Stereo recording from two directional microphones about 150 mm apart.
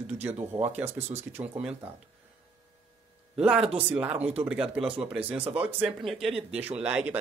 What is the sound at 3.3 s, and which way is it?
Speech, 5° right (ahead or behind).